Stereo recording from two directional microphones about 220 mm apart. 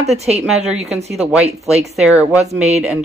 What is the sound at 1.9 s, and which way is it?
Speech, 5° right (ahead or behind).